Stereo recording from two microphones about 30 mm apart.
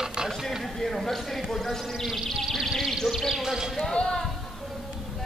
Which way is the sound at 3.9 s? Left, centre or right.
Left.